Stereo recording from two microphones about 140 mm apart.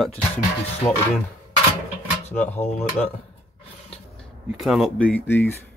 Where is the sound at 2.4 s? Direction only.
50° left (ahead or behind).